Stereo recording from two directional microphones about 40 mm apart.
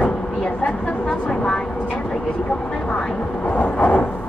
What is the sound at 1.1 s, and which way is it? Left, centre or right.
Speech, centre.